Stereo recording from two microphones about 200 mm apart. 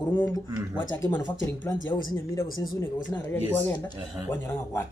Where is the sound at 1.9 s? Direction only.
15° left (ahead or behind).